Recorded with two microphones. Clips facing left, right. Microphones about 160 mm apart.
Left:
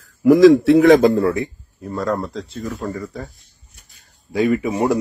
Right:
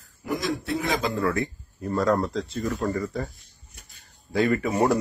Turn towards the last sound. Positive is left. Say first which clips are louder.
# left 4 dB
turn(degrees=0)  # may be behind; listen again after turning